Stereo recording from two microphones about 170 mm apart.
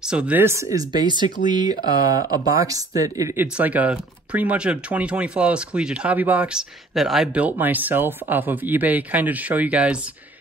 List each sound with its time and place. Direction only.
0.1 s speech: 10° right (ahead or behind)
3.5 s speech: 10° right (ahead or behind)